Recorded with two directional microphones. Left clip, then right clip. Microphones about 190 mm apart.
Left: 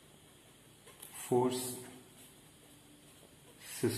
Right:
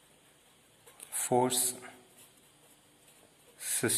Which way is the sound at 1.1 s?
60° right (ahead or behind).